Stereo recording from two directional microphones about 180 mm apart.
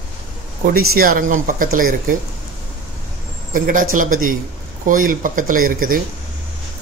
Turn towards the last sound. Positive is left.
turn(degrees=-50)  # may be behind; listen again after turning